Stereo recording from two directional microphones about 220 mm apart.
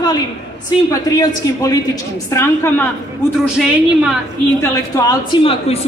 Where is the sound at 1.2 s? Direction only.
15° left (ahead or behind).